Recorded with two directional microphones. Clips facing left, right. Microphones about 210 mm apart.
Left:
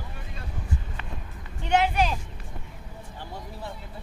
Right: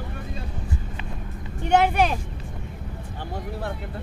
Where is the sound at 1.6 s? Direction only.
50° right (ahead or behind).